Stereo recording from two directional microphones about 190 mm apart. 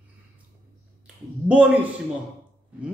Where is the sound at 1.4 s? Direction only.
5° right (ahead or behind).